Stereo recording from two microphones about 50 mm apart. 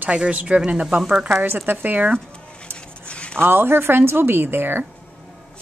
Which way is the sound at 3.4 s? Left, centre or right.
Right.